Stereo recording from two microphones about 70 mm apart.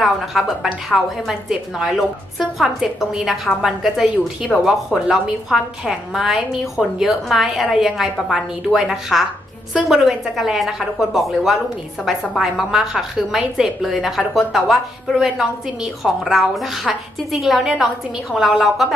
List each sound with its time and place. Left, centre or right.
0.0 s a woman's voice: centre